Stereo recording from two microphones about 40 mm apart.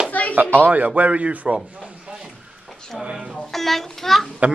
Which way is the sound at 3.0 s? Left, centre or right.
Right.